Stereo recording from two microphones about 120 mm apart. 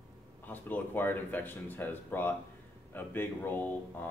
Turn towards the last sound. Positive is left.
turn(degrees=15)  # may be behind; listen again after turning